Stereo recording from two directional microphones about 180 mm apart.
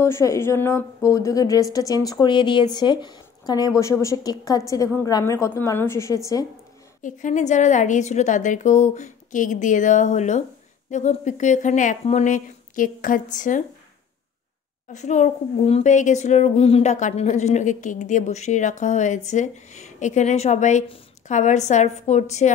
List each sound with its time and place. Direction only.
0.0 s a woman's voice: 15° left (ahead or behind)
7.0 s a woman's voice: 45° left (ahead or behind)
14.9 s speech: 40° left (ahead or behind)